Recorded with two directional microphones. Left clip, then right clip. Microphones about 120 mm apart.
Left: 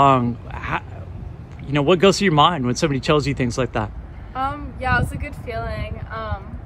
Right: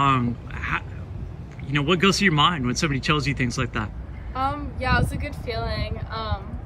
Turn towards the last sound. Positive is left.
turn(degrees=15)  # may be behind; listen again after turning